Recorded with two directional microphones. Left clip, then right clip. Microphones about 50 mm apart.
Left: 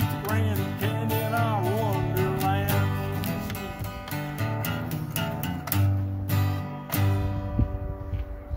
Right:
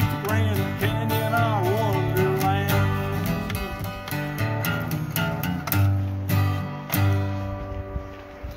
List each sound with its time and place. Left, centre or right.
0.4 s music: left
2.7 s music: centre